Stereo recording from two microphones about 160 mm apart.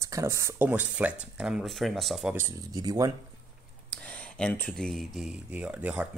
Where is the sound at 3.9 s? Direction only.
10° left (ahead or behind).